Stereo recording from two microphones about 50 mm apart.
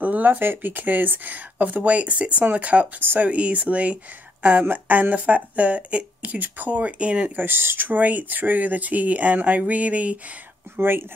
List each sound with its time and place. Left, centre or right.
0.0 s speech: right
3.0 s speech: right
3.3 s speech: right
7.3 s speech: right
10.8 s speech: right